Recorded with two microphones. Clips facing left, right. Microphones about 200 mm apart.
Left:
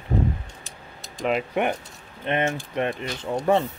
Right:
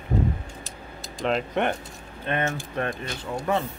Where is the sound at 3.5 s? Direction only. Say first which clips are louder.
Left 5 dB; 30° left (ahead or behind).